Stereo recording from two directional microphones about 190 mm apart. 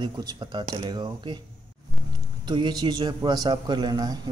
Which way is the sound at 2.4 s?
25° right (ahead or behind).